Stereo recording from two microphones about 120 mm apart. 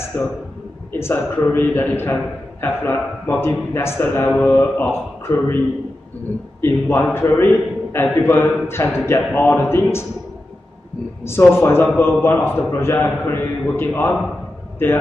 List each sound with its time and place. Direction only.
0.1 s a man's voice: 20° left (ahead or behind)
6.6 s a man's voice: 20° left (ahead or behind)
11.6 s a man's voice: 20° left (ahead or behind)